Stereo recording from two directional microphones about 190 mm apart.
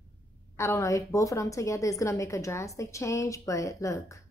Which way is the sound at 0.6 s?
15° left (ahead or behind).